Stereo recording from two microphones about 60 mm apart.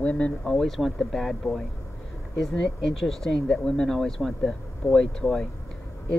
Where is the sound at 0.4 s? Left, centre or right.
Centre.